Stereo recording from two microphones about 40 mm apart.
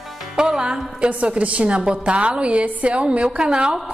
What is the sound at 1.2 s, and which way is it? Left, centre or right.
A woman's voice, right.